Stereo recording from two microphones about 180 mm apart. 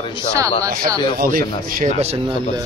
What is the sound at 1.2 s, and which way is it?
Speech, 55° right (ahead or behind).